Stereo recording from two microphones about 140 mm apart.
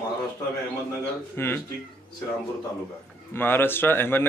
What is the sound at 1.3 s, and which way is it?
Speech, 15° left (ahead or behind).